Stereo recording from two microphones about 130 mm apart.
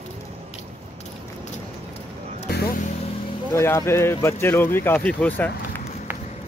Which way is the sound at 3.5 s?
20° left (ahead or behind).